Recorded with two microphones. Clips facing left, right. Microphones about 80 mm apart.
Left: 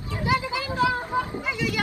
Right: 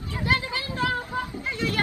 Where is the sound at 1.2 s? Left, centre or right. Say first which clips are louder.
Left 4 dB; left.